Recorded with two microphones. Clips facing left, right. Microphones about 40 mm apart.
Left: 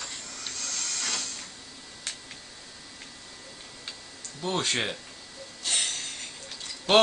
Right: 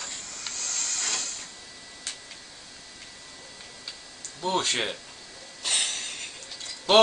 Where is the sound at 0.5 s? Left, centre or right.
Centre.